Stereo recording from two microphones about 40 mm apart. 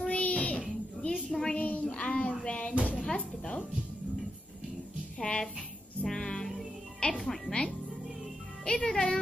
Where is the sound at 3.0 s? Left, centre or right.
Left.